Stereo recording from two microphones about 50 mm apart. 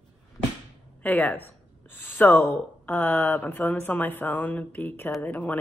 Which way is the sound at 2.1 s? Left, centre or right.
Left.